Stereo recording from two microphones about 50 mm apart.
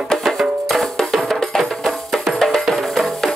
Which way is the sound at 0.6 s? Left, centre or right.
Centre.